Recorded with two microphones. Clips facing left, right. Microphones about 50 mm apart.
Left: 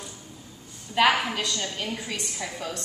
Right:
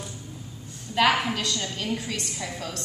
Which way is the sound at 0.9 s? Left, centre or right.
Centre.